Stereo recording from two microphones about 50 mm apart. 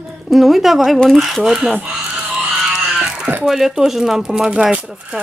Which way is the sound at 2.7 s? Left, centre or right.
Centre.